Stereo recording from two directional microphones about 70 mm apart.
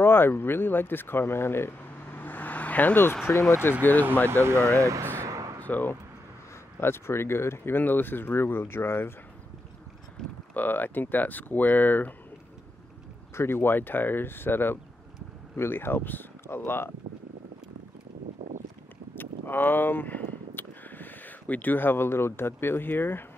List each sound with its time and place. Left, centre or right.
0.0 s speech: left
2.1 s vehicle: left
3.6 s speech: left
4.3 s speech: right
4.7 s speech: right
5.2 s a sound: right
5.6 s speech: left
6.8 s speech: left
10.2 s speech: centre
10.5 s speech: left
13.3 s speech: left
19.1 s a sound: left